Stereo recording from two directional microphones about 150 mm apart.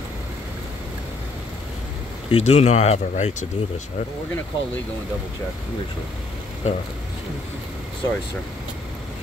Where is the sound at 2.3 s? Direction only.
45° left (ahead or behind).